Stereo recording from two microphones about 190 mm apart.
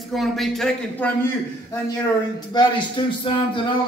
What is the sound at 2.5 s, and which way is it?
Speech, 20° left (ahead or behind).